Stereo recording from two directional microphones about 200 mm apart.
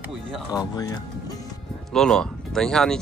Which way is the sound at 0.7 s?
20° left (ahead or behind).